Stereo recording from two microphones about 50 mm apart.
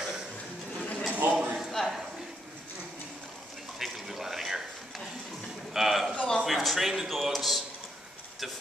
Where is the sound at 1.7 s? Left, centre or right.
Centre.